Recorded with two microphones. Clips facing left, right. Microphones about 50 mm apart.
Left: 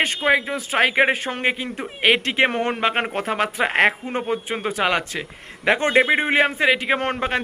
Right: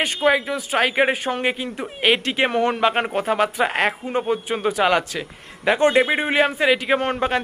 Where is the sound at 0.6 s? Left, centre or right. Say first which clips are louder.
Left 1 dB; left.